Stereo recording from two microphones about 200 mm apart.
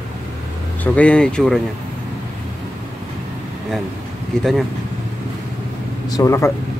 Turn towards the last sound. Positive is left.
turn(degrees=15)  # may be behind; listen again after turning